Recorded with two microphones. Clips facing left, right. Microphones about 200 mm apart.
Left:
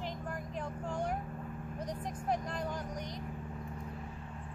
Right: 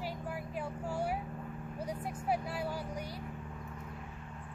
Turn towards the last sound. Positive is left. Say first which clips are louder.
# even
turn(degrees=-5)  # may be behind; listen again after turning